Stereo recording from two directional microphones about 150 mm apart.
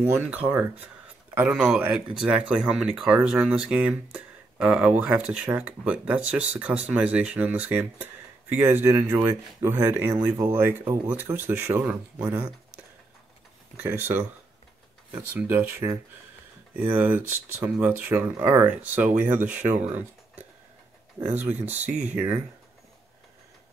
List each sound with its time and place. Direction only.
0.3 s speech: 10° right (ahead or behind)
13.7 s speech: 15° right (ahead or behind)
15.3 s speech: 15° right (ahead or behind)